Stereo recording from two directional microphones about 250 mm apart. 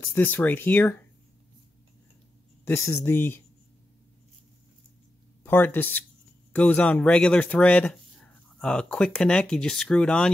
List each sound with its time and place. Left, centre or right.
0.1 s speech: centre
2.6 s speech: centre
5.4 s speech: centre